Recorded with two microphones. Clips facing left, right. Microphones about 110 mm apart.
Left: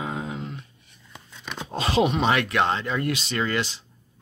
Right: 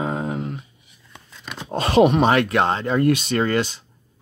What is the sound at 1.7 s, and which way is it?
Speech, 50° right (ahead or behind).